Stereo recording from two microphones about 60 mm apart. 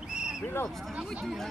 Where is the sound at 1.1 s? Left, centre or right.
Centre.